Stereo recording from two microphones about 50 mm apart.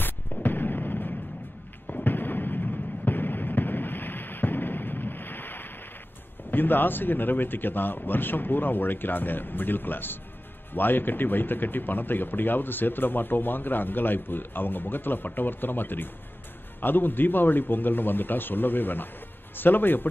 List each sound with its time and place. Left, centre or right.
0.0 s fireworks: left
6.5 s a man's voice: left